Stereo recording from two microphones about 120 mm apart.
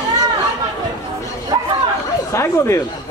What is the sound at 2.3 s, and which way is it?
Speech, 25° left (ahead or behind).